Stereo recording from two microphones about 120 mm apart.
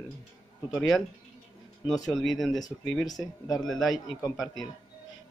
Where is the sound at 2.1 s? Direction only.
Centre (ahead or behind).